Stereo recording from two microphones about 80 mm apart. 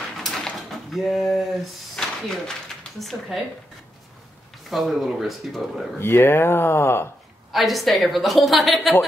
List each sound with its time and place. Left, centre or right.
0.2 s a sound: centre
0.6 s a woman's voice: centre
4.6 s a woman's voice: centre
5.9 s speech: left
7.5 s a woman's voice: centre